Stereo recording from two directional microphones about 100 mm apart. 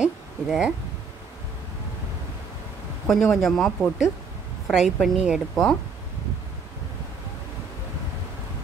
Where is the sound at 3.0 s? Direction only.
Centre (ahead or behind).